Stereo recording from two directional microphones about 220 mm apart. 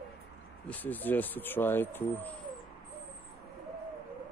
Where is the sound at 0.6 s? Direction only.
5° left (ahead or behind).